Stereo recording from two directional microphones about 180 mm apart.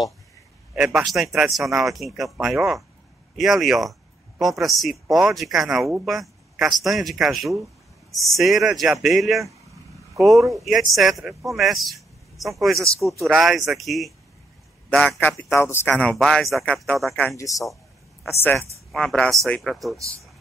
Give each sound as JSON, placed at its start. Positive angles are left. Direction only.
{"t": 0.7, "sound": "a man's voice", "side_deg": -5}
{"t": 15.1, "sound": "a man's voice", "side_deg": 15}
{"t": 17.4, "sound": "a man's voice", "side_deg": 20}